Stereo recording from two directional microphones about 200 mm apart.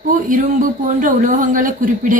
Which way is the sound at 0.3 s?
40° right (ahead or behind).